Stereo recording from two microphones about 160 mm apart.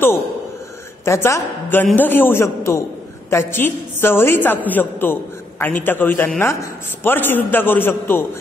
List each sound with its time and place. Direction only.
1.0 s a man's voice: 15° left (ahead or behind)